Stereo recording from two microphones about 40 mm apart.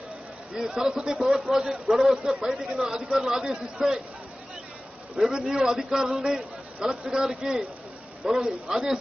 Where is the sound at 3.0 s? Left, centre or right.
Centre.